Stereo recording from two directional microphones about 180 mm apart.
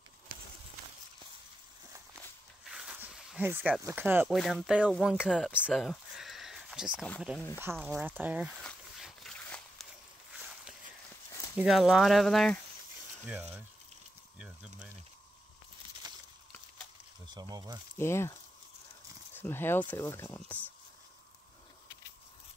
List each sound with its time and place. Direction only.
2.6 s a sound: 5° right (ahead or behind)
3.8 s speech: 10° right (ahead or behind)
4.3 s speech: centre (ahead or behind)
8.6 s a sound: centre (ahead or behind)
11.5 s speech: 5° right (ahead or behind)
14.4 s speech: 5° right (ahead or behind)
16.0 s a sound: 20° right (ahead or behind)
17.3 s speech: 20° right (ahead or behind)
17.9 s speech: 15° left (ahead or behind)
19.3 s speech: 10° left (ahead or behind)